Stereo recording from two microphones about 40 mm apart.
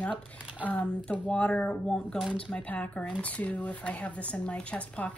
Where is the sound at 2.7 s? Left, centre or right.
Left.